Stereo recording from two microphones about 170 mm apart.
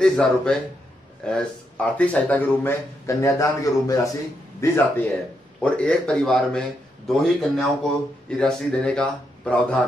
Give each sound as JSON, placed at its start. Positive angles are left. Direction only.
{"t": 0.0, "sound": "a man's voice", "side_deg": 5}